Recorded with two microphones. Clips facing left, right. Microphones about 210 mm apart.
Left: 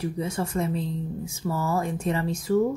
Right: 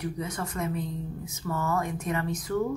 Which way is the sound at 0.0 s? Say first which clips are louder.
Left 4 dB; 30° left (ahead or behind).